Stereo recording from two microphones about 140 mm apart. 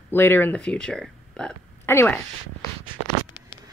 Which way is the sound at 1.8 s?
15° left (ahead or behind).